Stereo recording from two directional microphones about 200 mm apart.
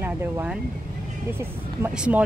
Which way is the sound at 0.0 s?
10° right (ahead or behind).